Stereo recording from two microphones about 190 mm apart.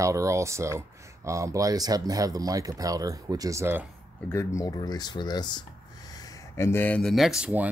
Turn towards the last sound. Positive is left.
turn(degrees=-5)  # may be behind; listen again after turning